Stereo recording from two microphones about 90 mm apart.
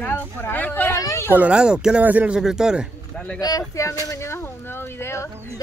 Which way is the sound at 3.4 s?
45° left (ahead or behind).